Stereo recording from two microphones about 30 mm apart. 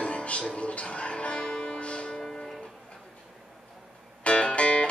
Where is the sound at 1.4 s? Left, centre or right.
Left.